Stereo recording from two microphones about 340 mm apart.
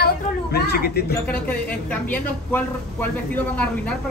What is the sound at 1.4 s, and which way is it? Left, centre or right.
Speech, centre.